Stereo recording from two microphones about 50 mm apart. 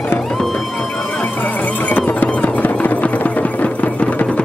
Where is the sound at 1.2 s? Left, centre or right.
Left.